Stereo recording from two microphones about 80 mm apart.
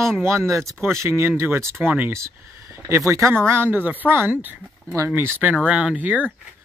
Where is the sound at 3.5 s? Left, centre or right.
Right.